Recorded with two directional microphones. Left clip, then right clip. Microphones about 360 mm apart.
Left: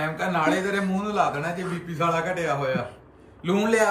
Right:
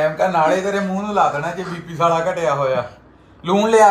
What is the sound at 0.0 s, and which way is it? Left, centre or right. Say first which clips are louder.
Speech: right 8 dB; centre.